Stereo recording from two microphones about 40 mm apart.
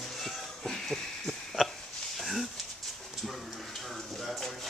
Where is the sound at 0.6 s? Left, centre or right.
Centre.